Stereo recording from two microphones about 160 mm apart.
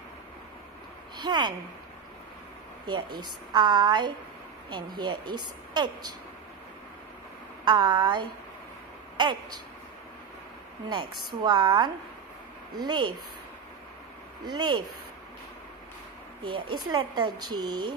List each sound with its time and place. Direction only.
1.1 s speech: 25° right (ahead or behind)
2.9 s speech: 25° right (ahead or behind)
7.6 s speech: 25° right (ahead or behind)
11.4 s speech: 25° right (ahead or behind)
14.4 s speech: 25° right (ahead or behind)
16.4 s speech: 30° right (ahead or behind)